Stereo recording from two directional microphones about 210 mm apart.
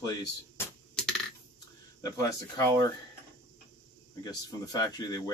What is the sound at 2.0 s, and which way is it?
Speech, 15° left (ahead or behind).